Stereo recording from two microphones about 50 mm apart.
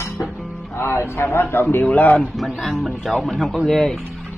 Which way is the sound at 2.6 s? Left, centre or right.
Centre.